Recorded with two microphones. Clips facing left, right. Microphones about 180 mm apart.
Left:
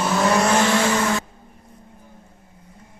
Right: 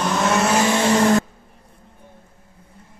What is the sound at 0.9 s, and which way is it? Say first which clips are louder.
Vehicle: right 6 dB; 35° right (ahead or behind).